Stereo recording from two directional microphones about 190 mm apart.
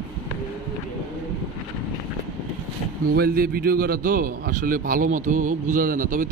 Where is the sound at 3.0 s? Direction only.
50° right (ahead or behind).